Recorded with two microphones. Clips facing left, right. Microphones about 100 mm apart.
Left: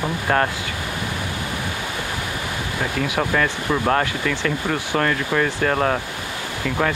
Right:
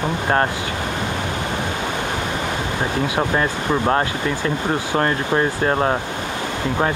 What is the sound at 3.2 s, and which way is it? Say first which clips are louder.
Speech: left 1 dB; 25° right (ahead or behind).